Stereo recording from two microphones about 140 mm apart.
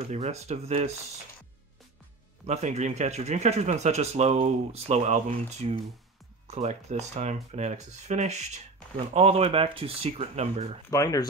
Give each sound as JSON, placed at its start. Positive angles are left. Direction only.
{"t": 0.1, "sound": "speech", "side_deg": -50}
{"t": 2.4, "sound": "speech", "side_deg": -50}
{"t": 10.9, "sound": "speech", "side_deg": 25}